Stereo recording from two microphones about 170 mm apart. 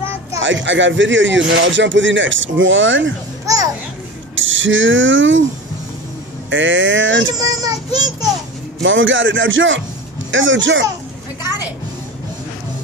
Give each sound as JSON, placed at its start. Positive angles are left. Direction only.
{"t": 0.4, "sound": "speech", "side_deg": -90}
{"t": 4.4, "sound": "a sound", "side_deg": -90}
{"t": 6.5, "sound": "speech", "side_deg": -90}
{"t": 7.3, "sound": "speech", "side_deg": -20}
{"t": 8.8, "sound": "speech", "side_deg": -90}